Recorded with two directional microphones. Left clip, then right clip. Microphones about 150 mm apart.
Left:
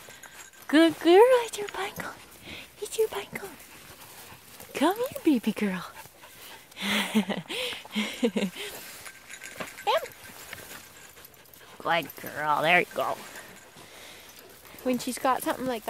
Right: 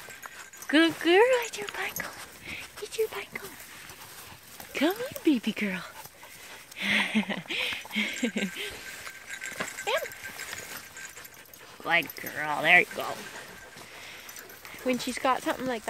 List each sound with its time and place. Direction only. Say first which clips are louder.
0.7 s speech: left 2 dB; 35° left (ahead or behind)
4.7 s speech: left 2 dB; 50° left (ahead or behind)
9.9 s horse: left 4 dB; 40° left (ahead or behind)
11.8 s speech: right 1 dB; 40° left (ahead or behind)
12.2 s speech: left 4 dB; 20° left (ahead or behind)
12.5 s speech: right 2 dB; 45° left (ahead or behind)
14.9 s speech: even; 10° left (ahead or behind)